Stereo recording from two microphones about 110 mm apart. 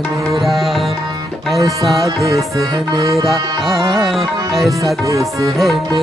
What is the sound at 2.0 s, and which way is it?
Music, 30° right (ahead or behind).